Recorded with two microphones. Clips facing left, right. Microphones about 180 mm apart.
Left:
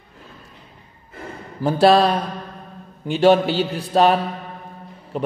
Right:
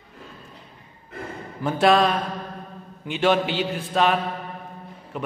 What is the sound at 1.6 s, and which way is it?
A man's voice, 35° left (ahead or behind).